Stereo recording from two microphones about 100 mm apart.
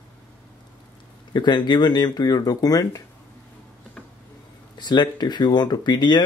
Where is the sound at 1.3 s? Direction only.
45° left (ahead or behind).